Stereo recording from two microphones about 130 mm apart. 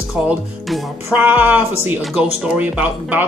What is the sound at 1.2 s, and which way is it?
Speech, 15° right (ahead or behind).